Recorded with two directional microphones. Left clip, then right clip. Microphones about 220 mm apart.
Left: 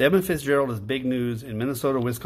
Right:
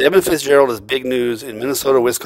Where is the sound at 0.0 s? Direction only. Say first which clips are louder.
Right 8 dB; 45° right (ahead or behind).